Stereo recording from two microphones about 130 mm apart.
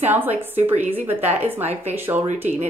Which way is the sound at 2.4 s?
65° right (ahead or behind).